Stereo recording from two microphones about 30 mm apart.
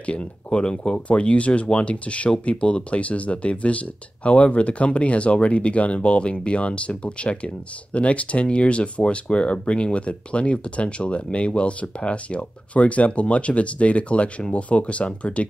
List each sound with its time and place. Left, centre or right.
0.0 s speech: left
0.9 s speech: left